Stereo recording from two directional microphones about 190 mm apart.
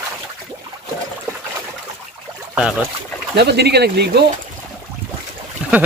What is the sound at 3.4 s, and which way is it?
Speech, 60° right (ahead or behind).